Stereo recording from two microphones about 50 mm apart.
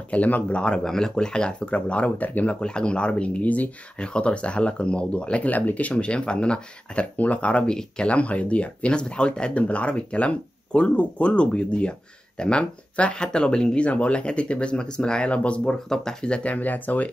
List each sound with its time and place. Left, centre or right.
0.1 s speech: left
0.8 s speech: centre; by 2.5 s left
2.6 s speech: centre
4.0 s speech: left
13.8 s speech: left
16.5 s speech: left